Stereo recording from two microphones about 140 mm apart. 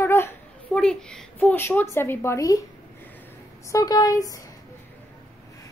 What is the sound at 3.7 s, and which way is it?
Speech, 25° left (ahead or behind).